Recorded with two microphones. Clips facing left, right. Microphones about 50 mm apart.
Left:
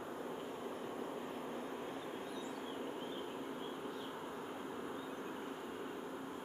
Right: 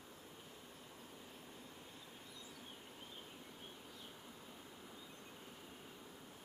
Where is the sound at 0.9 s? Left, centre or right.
Left.